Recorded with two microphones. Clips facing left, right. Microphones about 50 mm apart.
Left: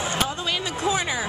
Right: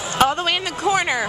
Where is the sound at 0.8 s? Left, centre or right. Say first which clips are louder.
Right 6 dB; right.